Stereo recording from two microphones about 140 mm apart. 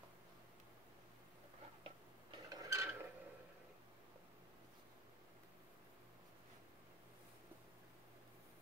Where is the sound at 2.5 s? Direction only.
20° right (ahead or behind).